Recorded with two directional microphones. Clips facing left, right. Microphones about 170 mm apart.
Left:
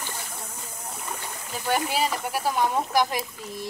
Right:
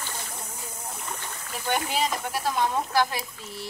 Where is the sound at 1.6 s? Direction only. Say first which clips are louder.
Left 2 dB; 5° left (ahead or behind).